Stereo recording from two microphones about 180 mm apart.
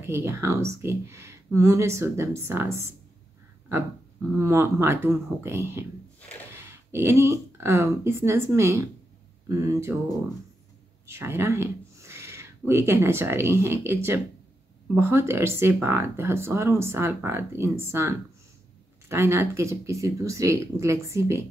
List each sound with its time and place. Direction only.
0.0 s speech: 15° right (ahead or behind)
4.4 s speech: 15° right (ahead or behind)
11.1 s speech: 15° right (ahead or behind)